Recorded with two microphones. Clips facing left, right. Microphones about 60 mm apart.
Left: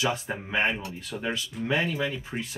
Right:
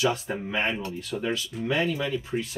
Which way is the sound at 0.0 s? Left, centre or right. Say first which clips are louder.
Right 2 dB; left.